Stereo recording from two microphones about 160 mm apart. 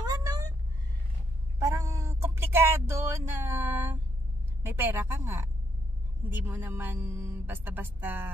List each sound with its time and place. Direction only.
0.0 s cat: 25° right (ahead or behind)
1.6 s a sound: 20° right (ahead or behind)
4.6 s speech: 15° right (ahead or behind)